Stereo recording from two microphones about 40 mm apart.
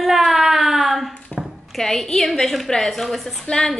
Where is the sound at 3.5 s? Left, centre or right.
Left.